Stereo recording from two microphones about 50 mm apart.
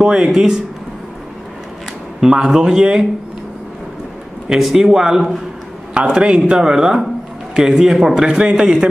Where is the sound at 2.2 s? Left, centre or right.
Centre.